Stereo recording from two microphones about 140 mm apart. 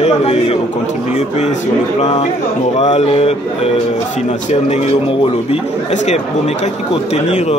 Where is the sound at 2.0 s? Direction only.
50° left (ahead or behind).